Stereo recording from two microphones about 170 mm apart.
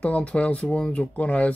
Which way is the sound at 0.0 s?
10° left (ahead or behind).